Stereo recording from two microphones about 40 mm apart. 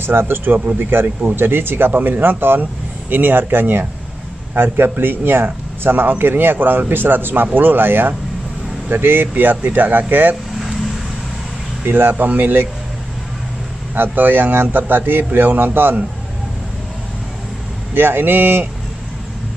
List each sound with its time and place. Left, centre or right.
0.0 s a man's voice: right
1.9 s a man's voice: right
9.4 s speech: right
11.8 s speech: right
13.9 s a man's voice: right
17.9 s a man's voice: right